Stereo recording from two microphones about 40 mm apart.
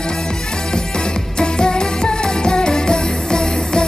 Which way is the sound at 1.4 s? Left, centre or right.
Centre.